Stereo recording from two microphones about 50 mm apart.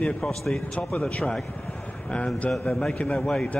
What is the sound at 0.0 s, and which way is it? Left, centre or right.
A man's voice, centre.